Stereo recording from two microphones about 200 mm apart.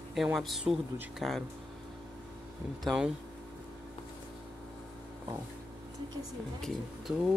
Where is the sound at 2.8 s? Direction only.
5° right (ahead or behind).